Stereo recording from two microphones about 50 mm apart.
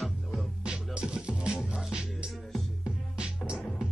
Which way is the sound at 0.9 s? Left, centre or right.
Centre.